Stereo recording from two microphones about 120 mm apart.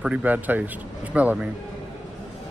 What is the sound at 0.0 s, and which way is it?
A man's voice, 10° right (ahead or behind).